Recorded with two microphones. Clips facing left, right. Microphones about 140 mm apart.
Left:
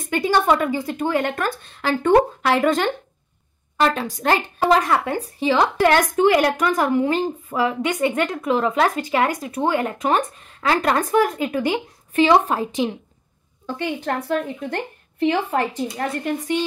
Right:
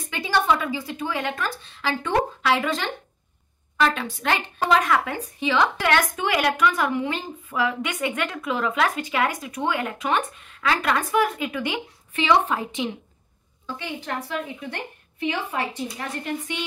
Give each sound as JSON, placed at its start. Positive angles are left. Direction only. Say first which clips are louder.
{"t": 0.1, "sound": "a woman's voice", "louder": "left 4 dB", "side_deg": 50}
{"t": 13.7, "sound": "speech", "louder": "left 7 dB", "side_deg": 55}